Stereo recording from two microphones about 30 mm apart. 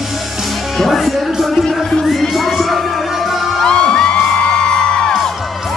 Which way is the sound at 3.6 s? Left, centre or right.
Left.